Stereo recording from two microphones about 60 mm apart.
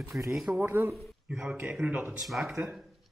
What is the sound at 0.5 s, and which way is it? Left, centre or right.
Speech, right.